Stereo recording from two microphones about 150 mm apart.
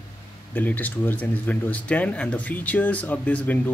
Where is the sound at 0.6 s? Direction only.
10° left (ahead or behind).